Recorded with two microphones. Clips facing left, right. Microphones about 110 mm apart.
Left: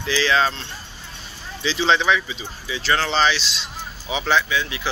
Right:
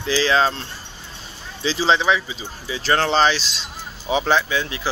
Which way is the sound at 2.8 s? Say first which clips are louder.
Right 3 dB; 45° right (ahead or behind).